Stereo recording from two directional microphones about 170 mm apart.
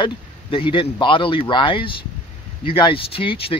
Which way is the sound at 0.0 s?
30° left (ahead or behind).